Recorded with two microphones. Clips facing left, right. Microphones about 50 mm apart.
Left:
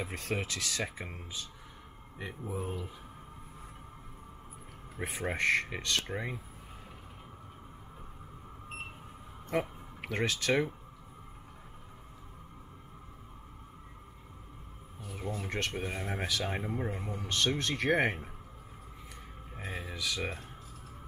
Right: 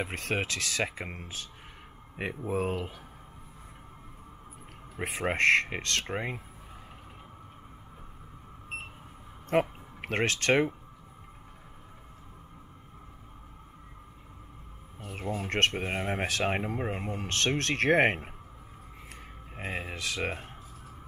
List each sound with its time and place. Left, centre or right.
0.0 s speech: right
5.0 s speech: right
6.1 s speech: right
9.5 s speech: right
15.0 s a sound: right
15.7 s speech: right
16.4 s speech: right
17.6 s speech: right
19.5 s speech: right